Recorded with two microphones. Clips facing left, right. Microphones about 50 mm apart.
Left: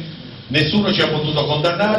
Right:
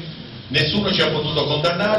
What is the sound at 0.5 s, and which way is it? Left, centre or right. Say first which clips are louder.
A man's voice: left 3 dB; centre.